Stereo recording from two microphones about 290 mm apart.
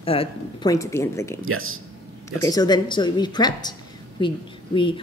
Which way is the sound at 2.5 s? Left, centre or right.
Centre.